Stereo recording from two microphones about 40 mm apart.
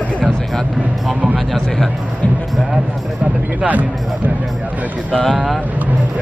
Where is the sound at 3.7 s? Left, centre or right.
Right.